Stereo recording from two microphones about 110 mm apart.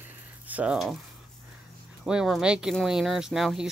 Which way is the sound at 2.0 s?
5° right (ahead or behind).